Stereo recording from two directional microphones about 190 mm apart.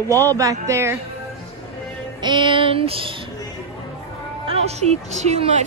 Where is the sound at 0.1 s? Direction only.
10° left (ahead or behind).